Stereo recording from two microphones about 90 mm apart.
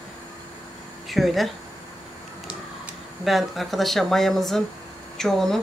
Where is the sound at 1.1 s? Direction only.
Centre (ahead or behind).